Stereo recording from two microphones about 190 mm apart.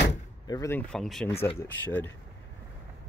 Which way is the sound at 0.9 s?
Centre (ahead or behind).